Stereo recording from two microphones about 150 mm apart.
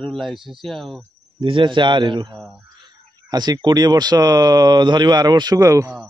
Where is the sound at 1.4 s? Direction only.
35° right (ahead or behind).